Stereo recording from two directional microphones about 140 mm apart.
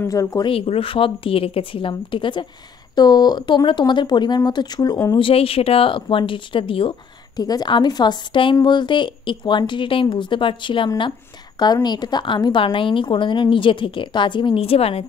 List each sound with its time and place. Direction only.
0.0 s speech: 25° left (ahead or behind)
0.5 s a woman's voice: 40° left (ahead or behind)
7.3 s a woman's voice: 30° left (ahead or behind); by 15.0 s 45° left (ahead or behind)